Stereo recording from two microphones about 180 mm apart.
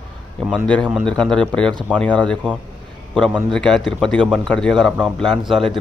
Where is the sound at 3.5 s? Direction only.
5° left (ahead or behind).